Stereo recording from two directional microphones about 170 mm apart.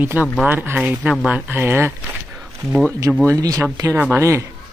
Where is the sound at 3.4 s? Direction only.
20° right (ahead or behind).